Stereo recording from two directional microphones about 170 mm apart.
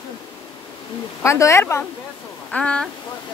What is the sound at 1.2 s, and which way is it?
Speech, 15° left (ahead or behind).